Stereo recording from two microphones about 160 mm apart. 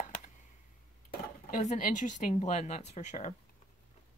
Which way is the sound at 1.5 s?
55° left (ahead or behind).